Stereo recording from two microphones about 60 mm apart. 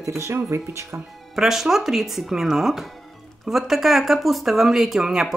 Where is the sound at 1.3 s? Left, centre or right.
Centre.